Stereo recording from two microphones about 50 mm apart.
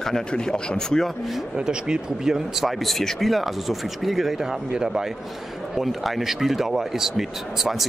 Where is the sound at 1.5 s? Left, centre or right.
Centre.